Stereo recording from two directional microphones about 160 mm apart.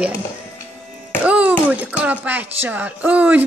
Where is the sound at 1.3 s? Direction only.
10° right (ahead or behind).